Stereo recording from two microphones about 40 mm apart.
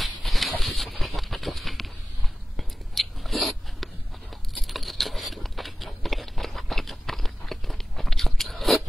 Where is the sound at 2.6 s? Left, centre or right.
Centre.